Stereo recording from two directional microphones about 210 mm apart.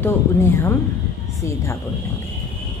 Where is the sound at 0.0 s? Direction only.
10° left (ahead or behind).